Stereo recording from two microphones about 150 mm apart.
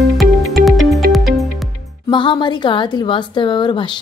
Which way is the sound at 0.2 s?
Centre (ahead or behind).